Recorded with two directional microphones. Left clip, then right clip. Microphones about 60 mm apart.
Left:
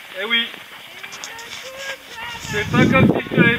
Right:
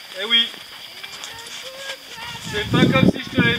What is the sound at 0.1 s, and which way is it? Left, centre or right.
Speech, right.